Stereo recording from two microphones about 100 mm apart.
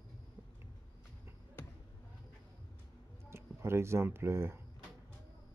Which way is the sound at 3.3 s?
25° right (ahead or behind).